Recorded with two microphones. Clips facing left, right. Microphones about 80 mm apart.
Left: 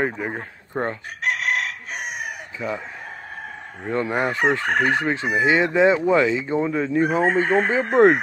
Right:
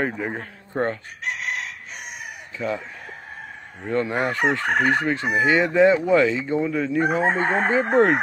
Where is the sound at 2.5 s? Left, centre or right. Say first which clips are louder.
Right 2 dB; centre.